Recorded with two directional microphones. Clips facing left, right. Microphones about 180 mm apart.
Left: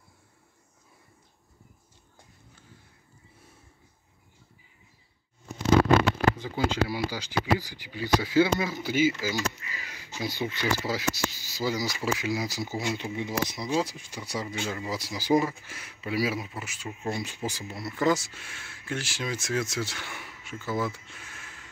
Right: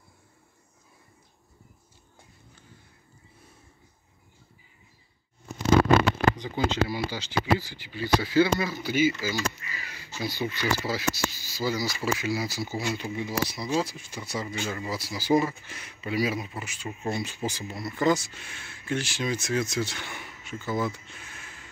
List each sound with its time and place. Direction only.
6.3 s speech: 5° left (ahead or behind)